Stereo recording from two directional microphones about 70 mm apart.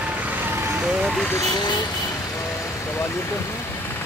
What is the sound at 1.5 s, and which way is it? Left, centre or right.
Speech, left.